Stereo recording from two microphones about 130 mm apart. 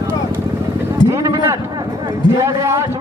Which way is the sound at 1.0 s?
25° right (ahead or behind).